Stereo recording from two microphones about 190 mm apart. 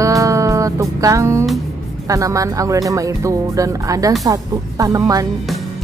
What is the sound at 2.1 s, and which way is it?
Speech, 15° right (ahead or behind).